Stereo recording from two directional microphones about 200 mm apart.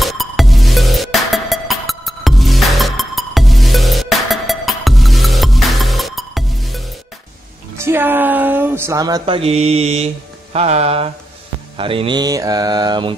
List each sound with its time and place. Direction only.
0.0 s music: centre (ahead or behind)
7.8 s a sound: 10° right (ahead or behind); by 11.1 s 30° right (ahead or behind)
11.7 s mantra: 25° right (ahead or behind)